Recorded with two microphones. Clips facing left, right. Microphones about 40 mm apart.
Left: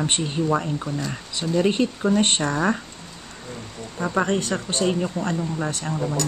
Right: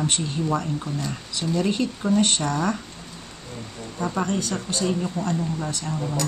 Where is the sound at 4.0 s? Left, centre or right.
Left.